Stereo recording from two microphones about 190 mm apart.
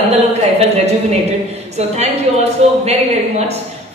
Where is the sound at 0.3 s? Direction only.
35° right (ahead or behind).